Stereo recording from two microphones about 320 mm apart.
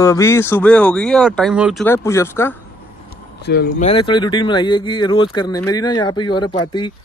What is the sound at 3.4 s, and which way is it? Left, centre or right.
Speech, left.